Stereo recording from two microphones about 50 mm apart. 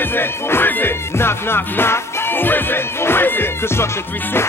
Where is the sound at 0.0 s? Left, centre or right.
Left.